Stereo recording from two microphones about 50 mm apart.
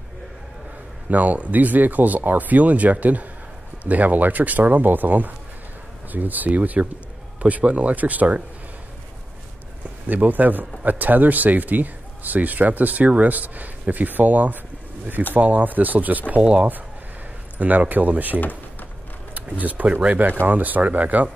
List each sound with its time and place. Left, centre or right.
1.1 s speech: right
10.0 s speech: right
16.3 s speech: right
17.6 s speech: right
18.4 s a sound: left
19.3 s speech: right